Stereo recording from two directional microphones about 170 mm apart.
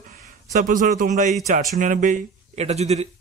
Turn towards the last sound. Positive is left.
turn(degrees=-40)  # may be behind; listen again after turning